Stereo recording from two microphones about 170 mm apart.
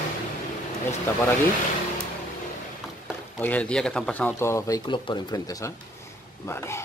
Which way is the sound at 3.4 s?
10° left (ahead or behind).